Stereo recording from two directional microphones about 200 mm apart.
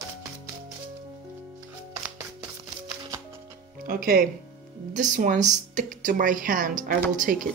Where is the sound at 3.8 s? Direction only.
45° right (ahead or behind).